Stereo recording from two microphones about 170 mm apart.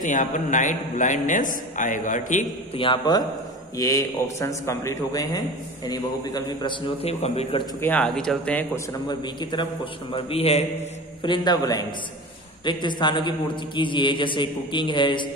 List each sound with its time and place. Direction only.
0.0 s a man's voice: 45° left (ahead or behind)
2.7 s a man's voice: 30° left (ahead or behind)
7.8 s speech: 10° left (ahead or behind)
8.7 s a man's voice: 25° left (ahead or behind)